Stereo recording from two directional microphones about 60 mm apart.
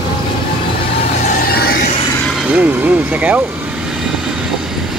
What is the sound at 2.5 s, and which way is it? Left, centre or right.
Speech, right.